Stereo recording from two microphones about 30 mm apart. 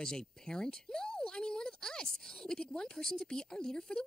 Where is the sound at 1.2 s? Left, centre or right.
Left.